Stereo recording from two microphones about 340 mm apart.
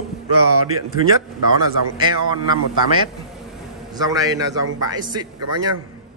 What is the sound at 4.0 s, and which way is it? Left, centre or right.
Speech, centre.